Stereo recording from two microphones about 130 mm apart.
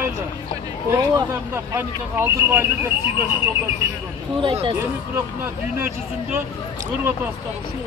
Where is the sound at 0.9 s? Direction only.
30° right (ahead or behind).